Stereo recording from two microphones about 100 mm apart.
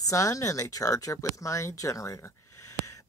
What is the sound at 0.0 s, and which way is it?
Speech, 35° left (ahead or behind).